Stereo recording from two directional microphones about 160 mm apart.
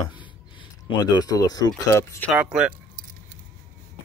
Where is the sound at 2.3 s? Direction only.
5° right (ahead or behind).